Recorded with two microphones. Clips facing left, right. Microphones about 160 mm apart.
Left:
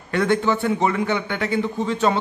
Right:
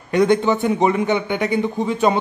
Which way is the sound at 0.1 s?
20° right (ahead or behind).